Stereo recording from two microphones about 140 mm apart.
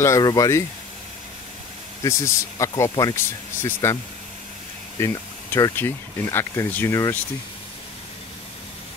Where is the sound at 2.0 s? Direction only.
20° left (ahead or behind).